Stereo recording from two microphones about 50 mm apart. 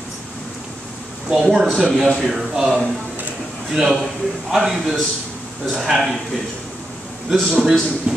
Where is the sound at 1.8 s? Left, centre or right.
Centre.